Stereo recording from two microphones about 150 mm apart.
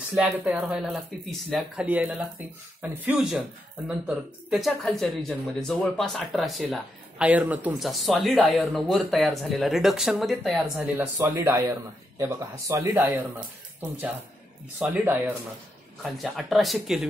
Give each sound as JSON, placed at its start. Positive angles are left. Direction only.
{"t": 0.1, "sound": "speech", "side_deg": -5}
{"t": 10.8, "sound": "a man's voice", "side_deg": -15}
{"t": 14.8, "sound": "speech", "side_deg": -10}
{"t": 16.0, "sound": "speech", "side_deg": 0}